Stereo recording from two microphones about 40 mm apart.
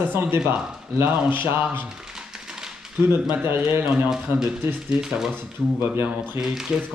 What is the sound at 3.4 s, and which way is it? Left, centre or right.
Speech, right.